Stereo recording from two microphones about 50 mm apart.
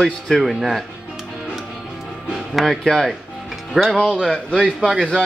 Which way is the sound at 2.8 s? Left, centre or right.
Centre.